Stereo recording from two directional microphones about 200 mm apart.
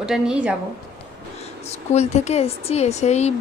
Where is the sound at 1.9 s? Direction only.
35° left (ahead or behind).